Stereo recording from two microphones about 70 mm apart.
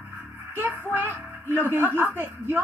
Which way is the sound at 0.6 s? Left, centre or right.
Right.